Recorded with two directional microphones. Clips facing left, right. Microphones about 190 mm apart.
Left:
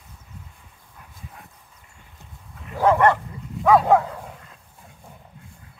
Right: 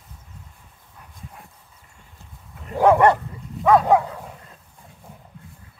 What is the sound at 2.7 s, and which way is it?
Speech, 15° right (ahead or behind).